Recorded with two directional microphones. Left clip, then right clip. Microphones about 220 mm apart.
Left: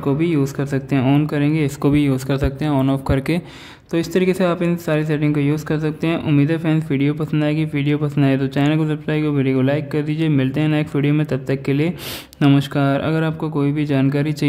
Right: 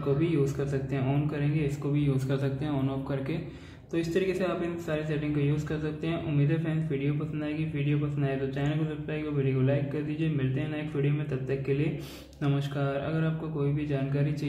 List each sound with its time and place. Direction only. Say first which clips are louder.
0.2 s speech: left 8 dB; 45° left (ahead or behind)